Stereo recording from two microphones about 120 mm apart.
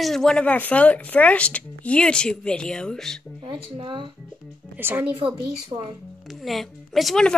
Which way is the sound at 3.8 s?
45° right (ahead or behind).